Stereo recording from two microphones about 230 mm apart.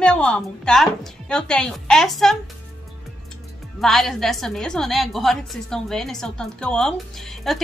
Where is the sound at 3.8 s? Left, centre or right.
Centre.